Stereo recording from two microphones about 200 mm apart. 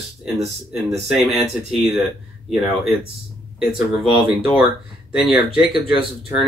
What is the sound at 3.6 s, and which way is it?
Speech, centre (ahead or behind).